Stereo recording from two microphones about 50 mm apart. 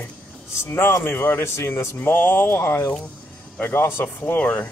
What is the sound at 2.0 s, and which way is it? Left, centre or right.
Speech, left.